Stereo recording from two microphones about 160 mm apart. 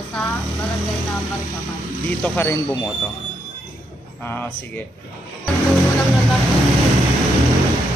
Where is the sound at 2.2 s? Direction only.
15° left (ahead or behind).